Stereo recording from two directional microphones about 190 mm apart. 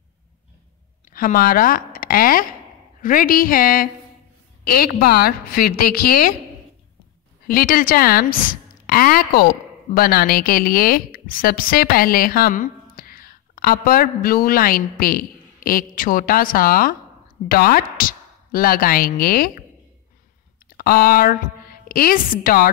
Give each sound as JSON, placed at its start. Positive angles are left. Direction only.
{"t": 1.1, "sound": "a woman's voice", "side_deg": 50}
{"t": 7.4, "sound": "a woman's voice", "side_deg": 50}
{"t": 20.7, "sound": "a woman's voice", "side_deg": 50}